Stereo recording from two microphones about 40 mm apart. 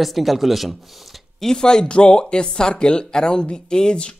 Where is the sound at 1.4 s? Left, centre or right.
Centre.